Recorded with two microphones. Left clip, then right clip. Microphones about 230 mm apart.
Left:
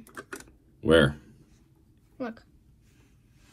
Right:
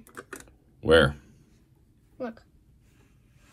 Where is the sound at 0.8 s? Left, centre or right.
Right.